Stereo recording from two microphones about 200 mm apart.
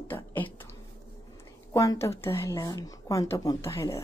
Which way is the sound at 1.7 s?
15° left (ahead or behind).